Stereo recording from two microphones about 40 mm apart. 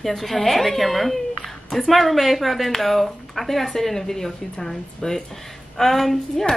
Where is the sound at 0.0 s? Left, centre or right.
Centre.